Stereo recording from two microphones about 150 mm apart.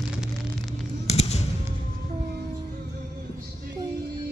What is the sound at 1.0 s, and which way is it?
Fireworks, 45° left (ahead or behind).